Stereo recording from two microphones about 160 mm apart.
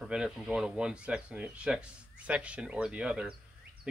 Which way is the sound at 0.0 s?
5° right (ahead or behind).